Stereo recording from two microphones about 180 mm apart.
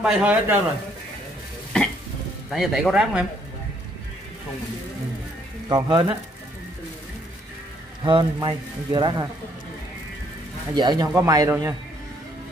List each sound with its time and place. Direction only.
0.0 s speech: 5° right (ahead or behind)
2.5 s speech: centre (ahead or behind)
5.7 s speech: 20° right (ahead or behind)
8.0 s speech: 25° right (ahead or behind)
10.7 s speech: 20° right (ahead or behind)